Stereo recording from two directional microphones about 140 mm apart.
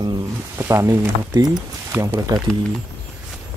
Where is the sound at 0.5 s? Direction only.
20° right (ahead or behind).